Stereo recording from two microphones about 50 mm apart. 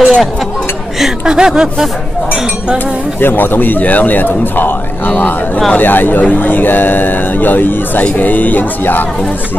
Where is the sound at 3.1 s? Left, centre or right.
Left.